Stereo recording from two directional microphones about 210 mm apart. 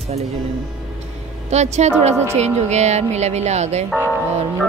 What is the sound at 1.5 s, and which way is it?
Speech, 30° right (ahead or behind).